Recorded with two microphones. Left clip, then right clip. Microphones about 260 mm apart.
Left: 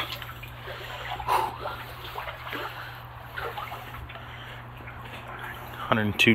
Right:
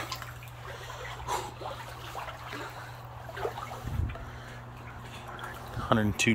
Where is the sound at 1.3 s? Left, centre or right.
Centre.